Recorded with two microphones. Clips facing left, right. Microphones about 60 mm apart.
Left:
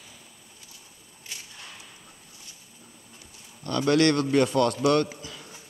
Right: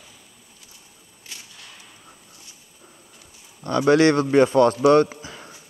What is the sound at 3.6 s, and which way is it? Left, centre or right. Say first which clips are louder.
A man's voice: right 5 dB; right.